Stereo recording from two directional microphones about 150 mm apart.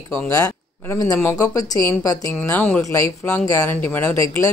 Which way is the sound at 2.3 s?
10° left (ahead or behind).